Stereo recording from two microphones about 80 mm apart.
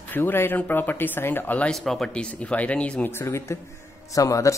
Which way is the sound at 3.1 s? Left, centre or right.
Left.